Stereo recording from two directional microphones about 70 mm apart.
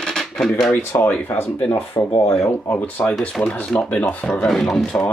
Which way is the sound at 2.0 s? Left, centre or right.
Left.